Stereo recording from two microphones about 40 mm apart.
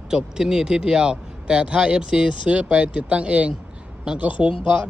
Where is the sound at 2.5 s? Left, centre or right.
Right.